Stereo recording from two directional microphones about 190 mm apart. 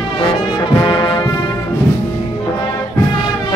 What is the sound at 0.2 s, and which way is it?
Brass instrument, 25° left (ahead or behind).